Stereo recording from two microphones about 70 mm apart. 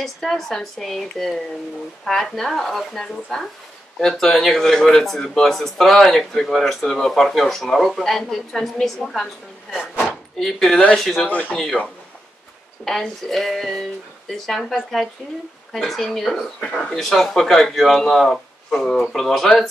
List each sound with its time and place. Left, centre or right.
0.0 s speech: centre
10.0 s a sound: centre
11.0 s speech: centre
11.2 s speech: left
11.5 s speech: centre
12.8 s speech: centre